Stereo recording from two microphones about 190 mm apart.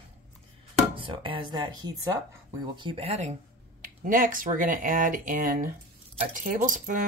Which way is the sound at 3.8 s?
45° right (ahead or behind).